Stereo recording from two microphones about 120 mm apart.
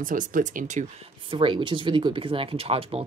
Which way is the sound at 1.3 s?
45° right (ahead or behind).